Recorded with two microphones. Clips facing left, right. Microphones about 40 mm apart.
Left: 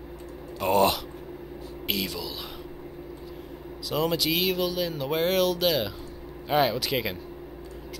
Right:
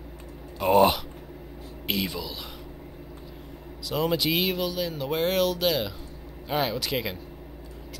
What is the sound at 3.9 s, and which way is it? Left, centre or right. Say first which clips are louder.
Speech: right 1 dB; centre.